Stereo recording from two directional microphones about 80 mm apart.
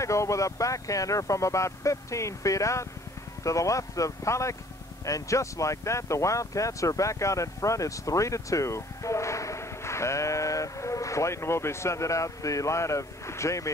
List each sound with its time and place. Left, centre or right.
0.0 s speech: left